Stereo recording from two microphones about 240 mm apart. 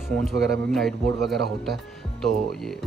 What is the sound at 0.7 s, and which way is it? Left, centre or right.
Speech, centre.